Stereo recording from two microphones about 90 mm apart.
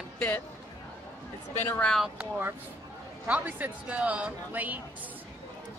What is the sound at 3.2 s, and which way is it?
A woman's voice, 15° right (ahead or behind).